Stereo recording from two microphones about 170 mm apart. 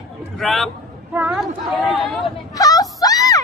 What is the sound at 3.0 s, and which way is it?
Music, 20° left (ahead or behind).